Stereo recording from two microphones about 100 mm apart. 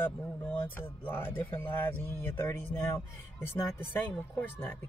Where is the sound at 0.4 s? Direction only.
20° left (ahead or behind).